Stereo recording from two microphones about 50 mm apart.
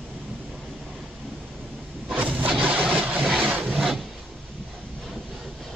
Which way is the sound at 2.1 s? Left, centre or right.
Right.